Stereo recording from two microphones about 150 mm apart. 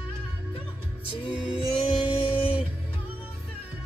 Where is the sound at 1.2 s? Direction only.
35° left (ahead or behind).